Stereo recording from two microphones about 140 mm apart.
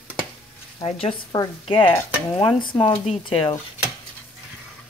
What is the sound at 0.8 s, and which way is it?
Speech, 45° left (ahead or behind).